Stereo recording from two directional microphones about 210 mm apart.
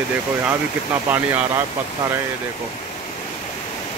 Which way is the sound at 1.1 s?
10° right (ahead or behind).